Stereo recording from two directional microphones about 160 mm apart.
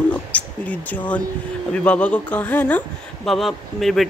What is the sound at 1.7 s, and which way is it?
Speech, 10° left (ahead or behind).